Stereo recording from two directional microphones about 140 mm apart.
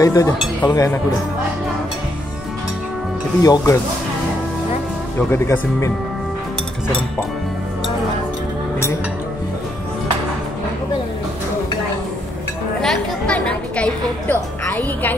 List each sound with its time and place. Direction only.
0.0 s speech: 25° left (ahead or behind)
3.4 s speech: 25° left (ahead or behind)
5.3 s speech: 20° left (ahead or behind)
12.8 s music: 5° left (ahead or behind)